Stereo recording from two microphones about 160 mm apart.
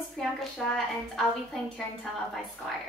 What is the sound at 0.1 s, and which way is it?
A woman's voice, centre (ahead or behind).